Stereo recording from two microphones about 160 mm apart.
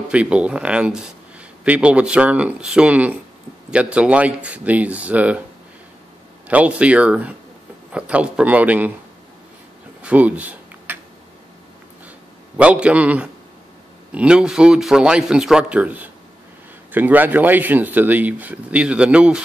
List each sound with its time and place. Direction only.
0.1 s speech: 5° right (ahead or behind)
6.4 s speech: 10° right (ahead or behind)
10.0 s a sound: 10° right (ahead or behind)
12.5 s a man's voice: 5° right (ahead or behind)